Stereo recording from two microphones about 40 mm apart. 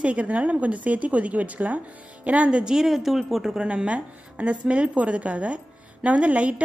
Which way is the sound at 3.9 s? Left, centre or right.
Right.